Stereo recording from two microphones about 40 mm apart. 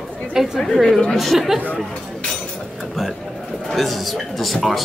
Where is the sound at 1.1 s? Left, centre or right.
Centre.